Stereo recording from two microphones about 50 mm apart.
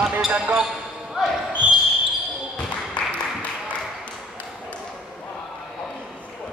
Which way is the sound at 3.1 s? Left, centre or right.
Left.